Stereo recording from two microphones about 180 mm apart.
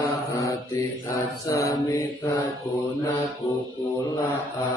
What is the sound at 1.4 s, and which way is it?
Mantra, 20° left (ahead or behind).